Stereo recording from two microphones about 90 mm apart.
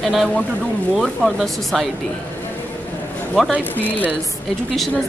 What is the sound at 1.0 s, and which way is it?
Speech, centre (ahead or behind).